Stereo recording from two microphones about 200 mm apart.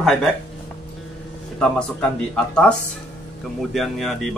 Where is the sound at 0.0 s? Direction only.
Centre (ahead or behind).